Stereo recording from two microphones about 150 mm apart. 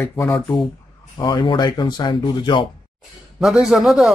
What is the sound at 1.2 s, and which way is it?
Speech, 30° left (ahead or behind).